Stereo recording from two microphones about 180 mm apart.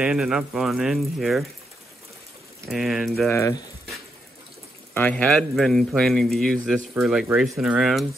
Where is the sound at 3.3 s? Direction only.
15° left (ahead or behind).